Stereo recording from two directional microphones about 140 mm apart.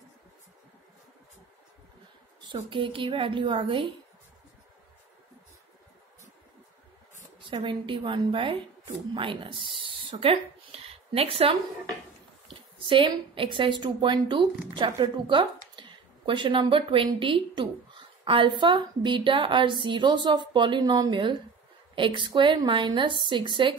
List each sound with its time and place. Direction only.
2.5 s a woman's voice: 35° right (ahead or behind)
7.4 s a woman's voice: 35° right (ahead or behind)